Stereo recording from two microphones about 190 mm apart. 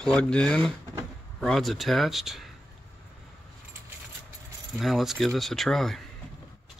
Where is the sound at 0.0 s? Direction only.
5° left (ahead or behind).